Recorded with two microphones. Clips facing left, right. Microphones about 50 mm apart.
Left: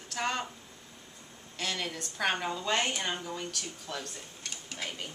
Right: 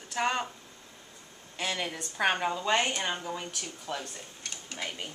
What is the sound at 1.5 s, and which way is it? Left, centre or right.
Speech, centre.